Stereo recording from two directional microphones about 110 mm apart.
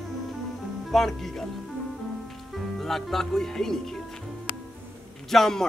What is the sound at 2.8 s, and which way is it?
Speech, centre (ahead or behind).